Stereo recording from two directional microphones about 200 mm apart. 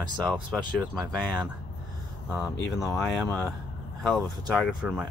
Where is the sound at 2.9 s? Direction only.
5° left (ahead or behind).